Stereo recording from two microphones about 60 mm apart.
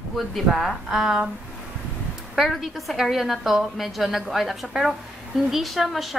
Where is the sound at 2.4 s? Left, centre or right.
Centre.